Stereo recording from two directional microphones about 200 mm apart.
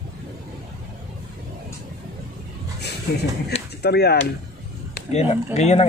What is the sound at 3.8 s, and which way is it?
Speech, 55° left (ahead or behind).